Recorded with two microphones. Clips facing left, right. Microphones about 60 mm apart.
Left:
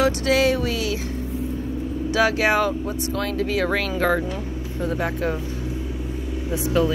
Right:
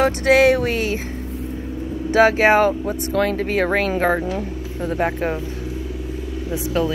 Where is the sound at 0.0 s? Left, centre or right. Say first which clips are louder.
Right 4 dB; right.